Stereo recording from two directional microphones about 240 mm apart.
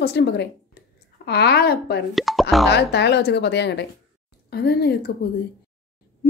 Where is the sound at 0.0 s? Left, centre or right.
Left.